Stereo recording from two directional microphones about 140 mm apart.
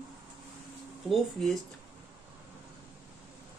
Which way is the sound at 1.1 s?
Centre (ahead or behind).